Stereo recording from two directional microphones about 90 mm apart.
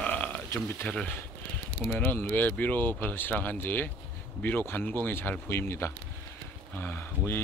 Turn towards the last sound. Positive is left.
turn(degrees=25)  # may be behind; listen again after turning